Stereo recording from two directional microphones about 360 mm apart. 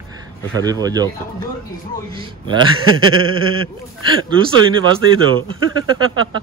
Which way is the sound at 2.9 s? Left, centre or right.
Right.